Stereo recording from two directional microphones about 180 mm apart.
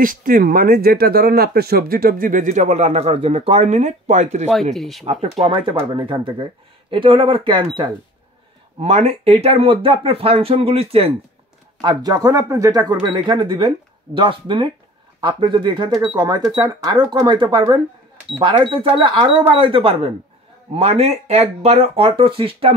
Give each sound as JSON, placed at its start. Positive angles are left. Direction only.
{"t": 0.0, "sound": "speech", "side_deg": -50}
{"t": 4.7, "sound": "speech", "side_deg": 0}
{"t": 5.0, "sound": "speech", "side_deg": -35}